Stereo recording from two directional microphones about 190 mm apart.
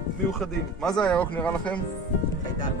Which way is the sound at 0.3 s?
Centre (ahead or behind).